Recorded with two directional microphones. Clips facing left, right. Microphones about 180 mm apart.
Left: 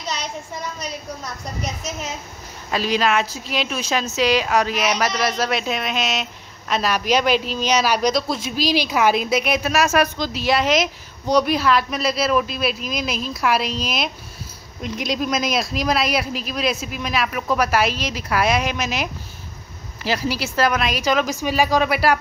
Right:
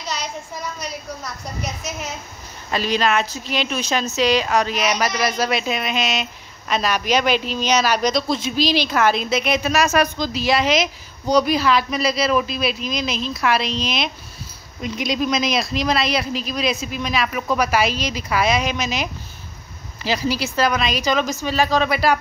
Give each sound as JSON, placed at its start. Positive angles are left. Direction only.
{"t": 0.7, "sound": "speech", "side_deg": 0}
{"t": 2.7, "sound": "speech", "side_deg": 5}